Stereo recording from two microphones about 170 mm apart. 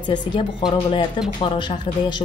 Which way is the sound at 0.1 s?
25° left (ahead or behind).